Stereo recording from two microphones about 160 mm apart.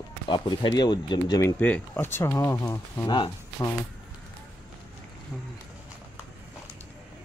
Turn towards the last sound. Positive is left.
turn(degrees=0)  # may be behind; listen again after turning